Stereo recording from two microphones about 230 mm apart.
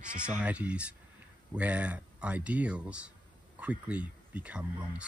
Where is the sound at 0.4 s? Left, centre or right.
Centre.